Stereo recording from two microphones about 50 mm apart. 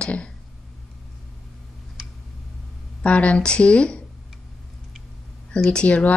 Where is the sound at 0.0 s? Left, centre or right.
Left.